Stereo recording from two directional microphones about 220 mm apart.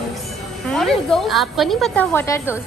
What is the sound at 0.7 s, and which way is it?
A woman's voice, centre (ahead or behind).